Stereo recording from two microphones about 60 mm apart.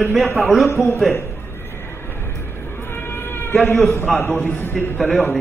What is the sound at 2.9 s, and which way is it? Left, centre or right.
Cat, left.